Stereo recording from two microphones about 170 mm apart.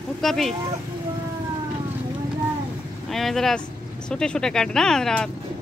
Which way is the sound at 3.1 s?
Centre (ahead or behind).